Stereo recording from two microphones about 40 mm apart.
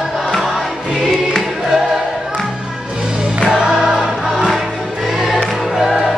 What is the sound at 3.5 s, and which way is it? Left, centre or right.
Music, centre.